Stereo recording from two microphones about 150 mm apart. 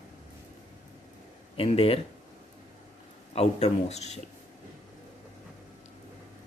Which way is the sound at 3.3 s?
45° left (ahead or behind).